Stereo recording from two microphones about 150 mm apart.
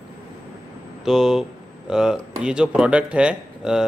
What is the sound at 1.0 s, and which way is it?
Speech, 5° right (ahead or behind).